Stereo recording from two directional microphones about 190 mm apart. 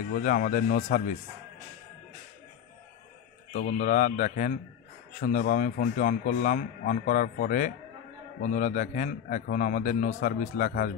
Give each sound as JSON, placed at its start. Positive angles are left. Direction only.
{"t": 0.1, "sound": "speech", "side_deg": 45}
{"t": 3.5, "sound": "speech", "side_deg": 40}